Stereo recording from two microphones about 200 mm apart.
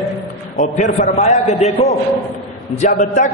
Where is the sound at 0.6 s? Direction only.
35° left (ahead or behind).